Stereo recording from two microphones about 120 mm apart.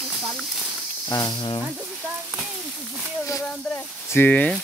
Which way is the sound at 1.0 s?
35° left (ahead or behind).